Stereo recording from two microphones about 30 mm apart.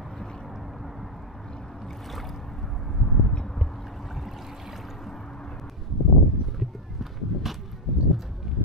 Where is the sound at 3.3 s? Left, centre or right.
Left.